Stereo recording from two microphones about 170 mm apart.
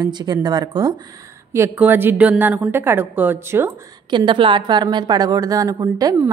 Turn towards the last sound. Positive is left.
turn(degrees=-20)  # may be behind; listen again after turning